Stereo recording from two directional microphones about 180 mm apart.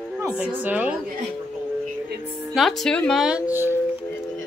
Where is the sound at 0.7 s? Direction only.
10° right (ahead or behind).